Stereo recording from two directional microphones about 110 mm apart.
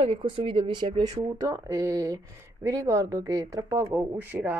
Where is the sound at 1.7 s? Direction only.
30° right (ahead or behind).